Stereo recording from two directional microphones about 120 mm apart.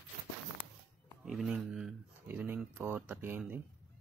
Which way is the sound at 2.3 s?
15° right (ahead or behind).